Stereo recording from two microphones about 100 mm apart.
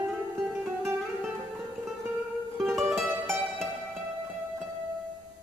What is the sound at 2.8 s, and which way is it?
Music, 5° right (ahead or behind).